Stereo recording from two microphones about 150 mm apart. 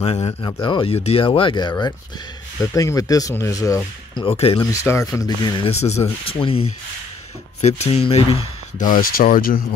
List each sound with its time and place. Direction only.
0.0 s speech: 45° left (ahead or behind)
0.3 s speech: 25° left (ahead or behind)
4.3 s speech: 40° left (ahead or behind)
4.8 s speech: 20° left (ahead or behind)
6.2 s speech: 35° left (ahead or behind)
8.7 s speech: 60° left (ahead or behind)